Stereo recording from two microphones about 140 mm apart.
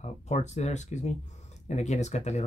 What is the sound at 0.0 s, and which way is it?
Speech, 55° left (ahead or behind).